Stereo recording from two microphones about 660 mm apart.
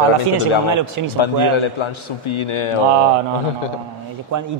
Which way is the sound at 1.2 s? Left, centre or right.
Left.